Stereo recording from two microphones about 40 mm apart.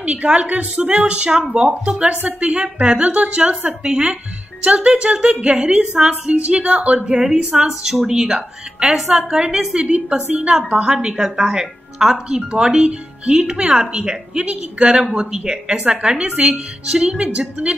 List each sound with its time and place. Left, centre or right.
0.0 s a woman's voice: right
7.2 s a woman's voice: centre
8.8 s a woman's voice: centre
9.3 s a woman's voice: right